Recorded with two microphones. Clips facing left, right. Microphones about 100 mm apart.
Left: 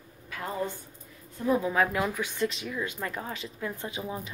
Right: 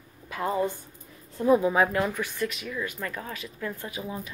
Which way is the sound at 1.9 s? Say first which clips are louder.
Right 2 dB; 5° left (ahead or behind).